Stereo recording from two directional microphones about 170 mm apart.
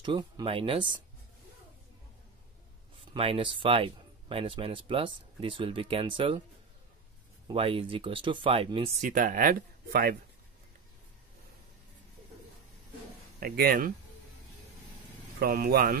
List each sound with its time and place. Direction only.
0.0 s speech: 25° right (ahead or behind)
3.1 s speech: 30° right (ahead or behind)
7.4 s speech: 30° right (ahead or behind)
9.1 s speech: 55° right (ahead or behind)
13.4 s speech: 60° right (ahead or behind)
15.3 s speech: 65° right (ahead or behind)